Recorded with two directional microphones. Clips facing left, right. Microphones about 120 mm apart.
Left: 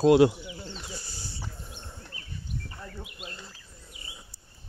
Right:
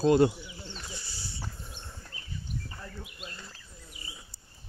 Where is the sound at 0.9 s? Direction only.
45° left (ahead or behind).